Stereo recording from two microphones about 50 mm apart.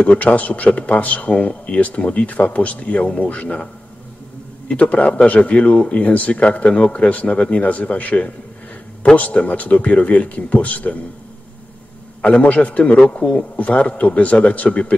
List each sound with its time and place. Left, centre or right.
0.0 s a man's voice: left
4.6 s a man's voice: left
12.2 s a man's voice: left
13.2 s a man's voice: centre
13.6 s a man's voice: left